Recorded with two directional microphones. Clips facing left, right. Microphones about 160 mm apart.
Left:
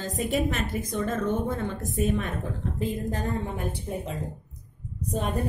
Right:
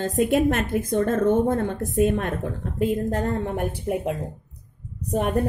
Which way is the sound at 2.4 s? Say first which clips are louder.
Right 5 dB; 65° right (ahead or behind).